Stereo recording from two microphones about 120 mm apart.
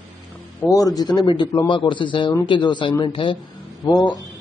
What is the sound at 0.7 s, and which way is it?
A man's voice, 30° left (ahead or behind).